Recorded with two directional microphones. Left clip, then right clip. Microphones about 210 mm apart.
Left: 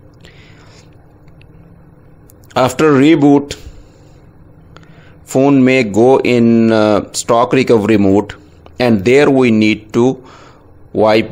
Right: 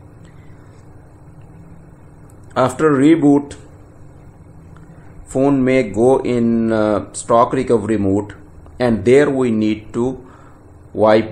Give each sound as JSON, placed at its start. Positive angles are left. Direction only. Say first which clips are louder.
{"t": 2.5, "sound": "speech", "louder": "left 4 dB", "side_deg": 35}
{"t": 5.3, "sound": "speech", "louder": "left 5 dB", "side_deg": 35}